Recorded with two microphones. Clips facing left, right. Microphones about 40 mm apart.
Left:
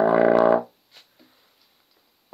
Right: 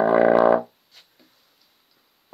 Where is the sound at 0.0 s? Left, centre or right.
Centre.